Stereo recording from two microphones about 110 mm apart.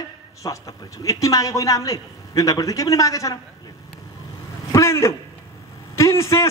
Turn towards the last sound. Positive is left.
turn(degrees=25)  # may be behind; listen again after turning